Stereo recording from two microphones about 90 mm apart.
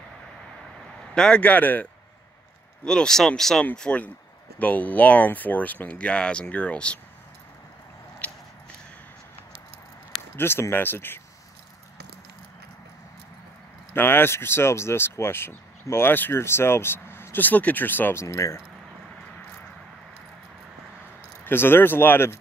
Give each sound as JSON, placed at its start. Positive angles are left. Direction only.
{"t": 1.1, "sound": "speech", "side_deg": 10}
{"t": 10.3, "sound": "speech", "side_deg": 25}
{"t": 13.9, "sound": "speech", "side_deg": 25}
{"t": 18.2, "sound": "speech", "side_deg": 35}
{"t": 21.5, "sound": "speech", "side_deg": 25}